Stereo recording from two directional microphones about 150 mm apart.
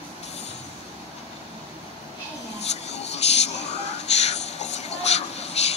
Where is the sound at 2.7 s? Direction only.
45° left (ahead or behind).